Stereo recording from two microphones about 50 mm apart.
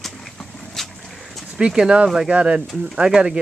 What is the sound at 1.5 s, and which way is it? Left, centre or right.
Speech, centre.